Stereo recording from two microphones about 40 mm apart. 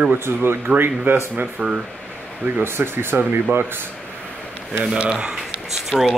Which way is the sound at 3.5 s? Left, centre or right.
Right.